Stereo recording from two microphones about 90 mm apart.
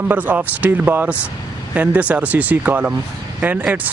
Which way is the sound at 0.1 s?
20° right (ahead or behind).